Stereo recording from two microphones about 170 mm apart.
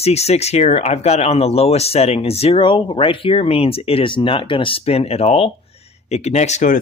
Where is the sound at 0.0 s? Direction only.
40° left (ahead or behind).